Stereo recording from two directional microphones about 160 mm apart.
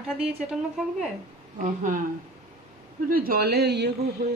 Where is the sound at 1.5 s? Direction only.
55° right (ahead or behind).